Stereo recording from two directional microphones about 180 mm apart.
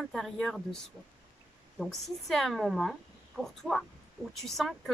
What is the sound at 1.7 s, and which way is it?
Speech, centre (ahead or behind).